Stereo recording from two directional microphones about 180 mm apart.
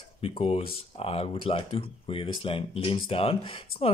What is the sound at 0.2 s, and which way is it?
Speech, 30° left (ahead or behind).